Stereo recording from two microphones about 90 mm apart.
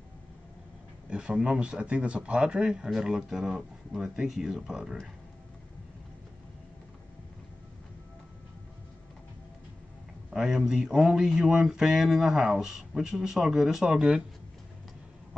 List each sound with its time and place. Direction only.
1.1 s speech: 10° right (ahead or behind)
10.3 s speech: 5° right (ahead or behind)